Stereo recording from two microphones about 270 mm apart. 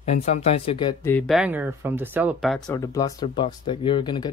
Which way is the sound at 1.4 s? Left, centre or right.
Centre.